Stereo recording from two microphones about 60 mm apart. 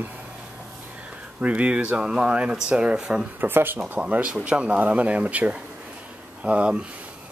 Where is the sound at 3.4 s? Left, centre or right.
Right.